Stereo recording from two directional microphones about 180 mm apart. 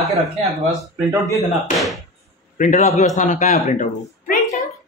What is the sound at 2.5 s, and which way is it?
A man's voice, 45° left (ahead or behind).